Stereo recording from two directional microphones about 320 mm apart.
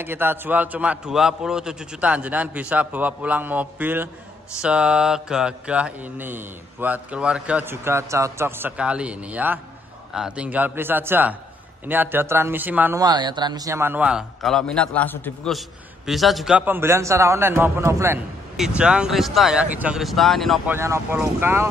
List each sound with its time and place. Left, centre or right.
0.0 s mantra: centre
16.1 s a man's voice: centre
18.8 s mantra: centre